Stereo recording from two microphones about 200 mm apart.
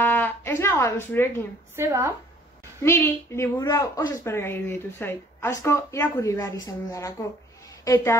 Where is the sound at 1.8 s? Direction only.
15° right (ahead or behind).